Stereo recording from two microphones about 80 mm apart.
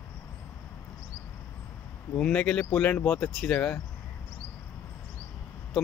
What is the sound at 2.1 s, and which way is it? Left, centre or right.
Speech, centre.